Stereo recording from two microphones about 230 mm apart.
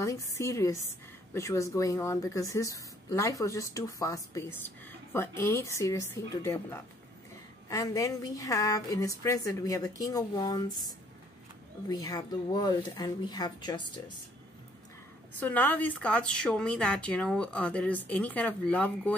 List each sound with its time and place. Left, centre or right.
0.0 s speech: centre
11.9 s speech: centre
15.4 s speech: centre